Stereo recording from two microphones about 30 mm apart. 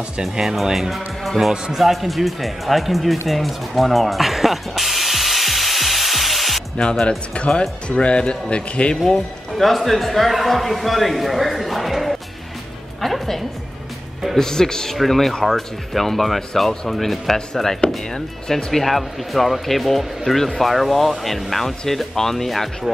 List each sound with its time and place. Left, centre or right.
0.4 s speech: centre
0.7 s speech: centre
1.8 s music: centre
6.8 s speech: left
9.6 s speech: centre
13.0 s music: centre
14.3 s speech: centre